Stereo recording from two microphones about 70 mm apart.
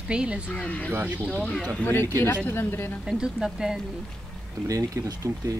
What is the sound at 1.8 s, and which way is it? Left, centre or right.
Speech, left.